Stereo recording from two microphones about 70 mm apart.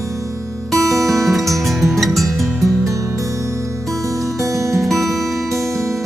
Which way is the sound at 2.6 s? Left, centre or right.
Right.